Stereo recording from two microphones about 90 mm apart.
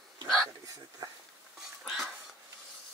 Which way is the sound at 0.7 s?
40° right (ahead or behind).